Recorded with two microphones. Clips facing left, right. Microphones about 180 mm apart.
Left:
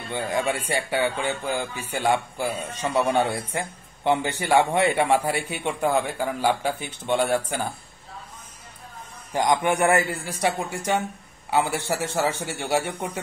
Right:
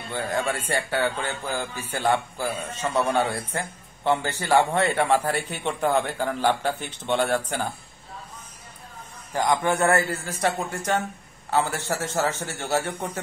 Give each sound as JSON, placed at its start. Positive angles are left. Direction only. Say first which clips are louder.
{"t": 0.1, "sound": "a man's voice", "louder": "left 1 dB", "side_deg": 15}
{"t": 9.3, "sound": "a man's voice", "louder": "left 1 dB", "side_deg": 15}